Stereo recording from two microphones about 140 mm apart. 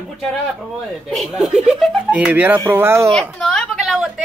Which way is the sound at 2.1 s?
10° right (ahead or behind).